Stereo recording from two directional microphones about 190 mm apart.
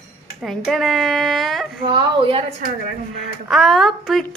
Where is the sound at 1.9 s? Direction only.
25° right (ahead or behind).